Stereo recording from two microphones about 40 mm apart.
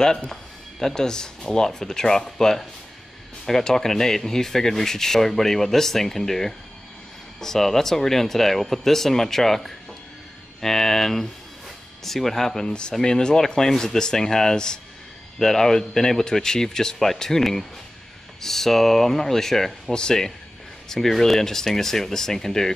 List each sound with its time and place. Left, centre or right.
0.3 s speech: centre
12.6 s speech: left